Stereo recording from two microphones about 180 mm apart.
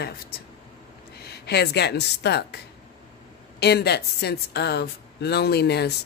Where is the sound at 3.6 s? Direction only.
65° left (ahead or behind).